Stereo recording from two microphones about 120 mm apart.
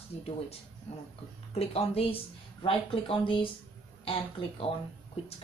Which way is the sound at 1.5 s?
55° left (ahead or behind).